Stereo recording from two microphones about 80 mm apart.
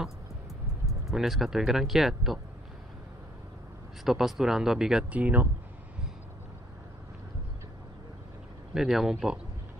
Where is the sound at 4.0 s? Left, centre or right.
Centre.